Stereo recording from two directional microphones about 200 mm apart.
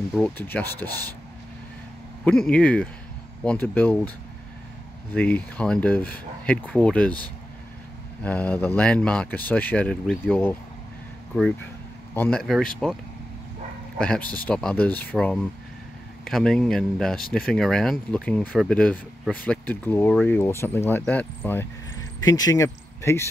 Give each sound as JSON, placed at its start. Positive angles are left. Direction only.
{"t": 0.1, "sound": "speech", "side_deg": 5}
{"t": 2.2, "sound": "speech", "side_deg": 5}
{"t": 5.1, "sound": "speech", "side_deg": 5}
{"t": 8.2, "sound": "speech", "side_deg": 5}
{"t": 12.2, "sound": "speech", "side_deg": 5}
{"t": 13.9, "sound": "speech", "side_deg": 5}